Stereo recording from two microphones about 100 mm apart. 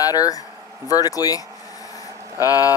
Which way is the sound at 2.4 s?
40° left (ahead or behind).